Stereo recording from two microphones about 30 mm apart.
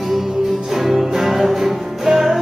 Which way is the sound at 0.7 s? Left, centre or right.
Centre.